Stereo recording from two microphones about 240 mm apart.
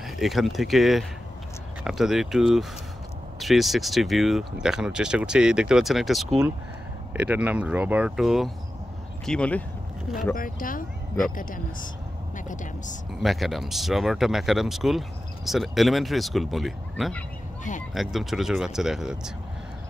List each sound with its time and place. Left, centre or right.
0.0 s speech: centre
10.3 s speech: left
13.2 s speech: centre